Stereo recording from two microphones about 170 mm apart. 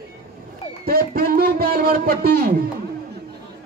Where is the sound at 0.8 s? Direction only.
65° right (ahead or behind).